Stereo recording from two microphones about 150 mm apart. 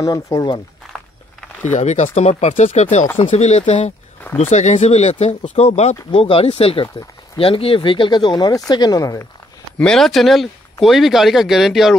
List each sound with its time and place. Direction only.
0.0 s speech: 25° left (ahead or behind)
1.7 s speech: 50° left (ahead or behind); by 9.3 s 25° left (ahead or behind)
9.8 s speech: 5° left (ahead or behind)